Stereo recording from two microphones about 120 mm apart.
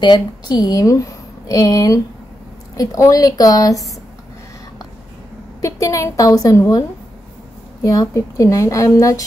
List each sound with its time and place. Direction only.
0.0 s a woman's voice: 40° left (ahead or behind)
5.6 s a woman's voice: 25° left (ahead or behind)
7.8 s a woman's voice: 30° left (ahead or behind)